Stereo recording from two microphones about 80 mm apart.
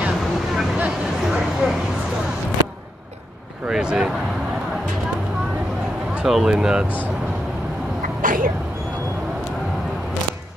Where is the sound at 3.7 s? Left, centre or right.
Centre.